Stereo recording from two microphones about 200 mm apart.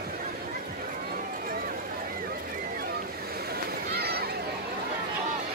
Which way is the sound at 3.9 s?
55° right (ahead or behind).